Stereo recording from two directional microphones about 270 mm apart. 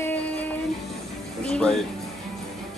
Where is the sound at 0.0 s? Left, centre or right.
Centre.